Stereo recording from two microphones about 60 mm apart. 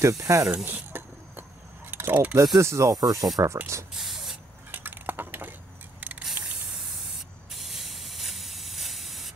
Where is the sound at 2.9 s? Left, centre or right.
Right.